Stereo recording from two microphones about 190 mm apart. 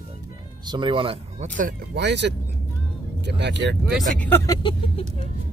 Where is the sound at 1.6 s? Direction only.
50° right (ahead or behind); by 3.7 s 65° right (ahead or behind).